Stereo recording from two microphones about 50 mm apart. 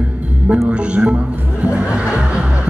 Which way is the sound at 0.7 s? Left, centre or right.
Right.